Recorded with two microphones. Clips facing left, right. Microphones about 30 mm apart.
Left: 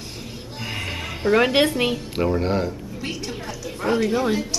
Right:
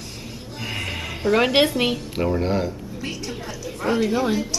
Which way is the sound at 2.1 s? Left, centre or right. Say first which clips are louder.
Left 1 dB; centre.